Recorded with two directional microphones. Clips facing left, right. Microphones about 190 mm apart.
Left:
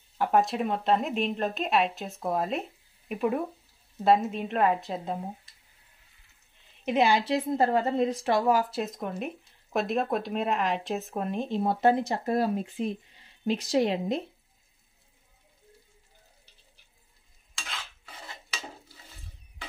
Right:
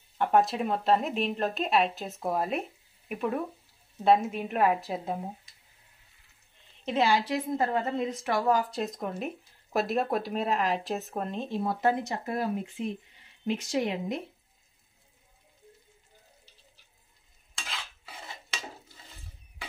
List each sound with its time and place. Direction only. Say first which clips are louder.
0.2 s speech: even; centre (ahead or behind)
4.2 s speech: left 1 dB; 5° right (ahead or behind)
6.8 s a woman's voice: left 2 dB; 15° left (ahead or behind)
8.5 s speech: left 1 dB; 5° left (ahead or behind)
11.2 s a woman's voice: left 5 dB; 15° left (ahead or behind); by 14.2 s 30° left (ahead or behind)
17.6 s stir: even; centre (ahead or behind)